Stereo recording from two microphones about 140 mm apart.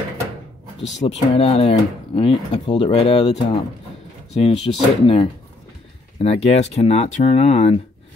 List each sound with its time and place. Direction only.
1.0 s speech: 45° left (ahead or behind)